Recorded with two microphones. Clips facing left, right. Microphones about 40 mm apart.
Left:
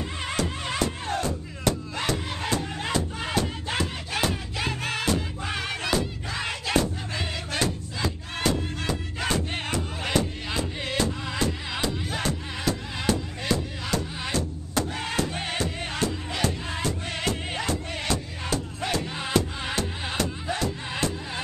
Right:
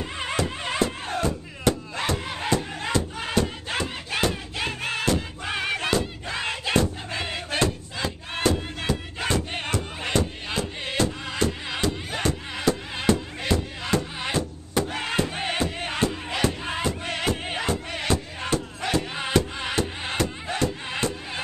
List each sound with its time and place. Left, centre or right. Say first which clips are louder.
0.2 s music: right 2 dB; centre
2.8 s battle cry: right 1 dB; centre
3.8 s battle cry: right 3 dB; centre
5.4 s music: right 3 dB; centre
6.3 s crowd: right 2 dB; centre
9.3 s music: right 2 dB; centre
11.9 s music: right 1 dB; centre